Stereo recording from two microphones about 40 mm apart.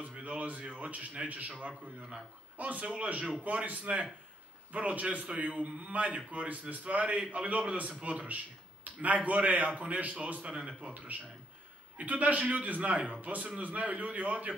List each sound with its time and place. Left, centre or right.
0.2 s a man's voice: right
2.5 s a man's voice: right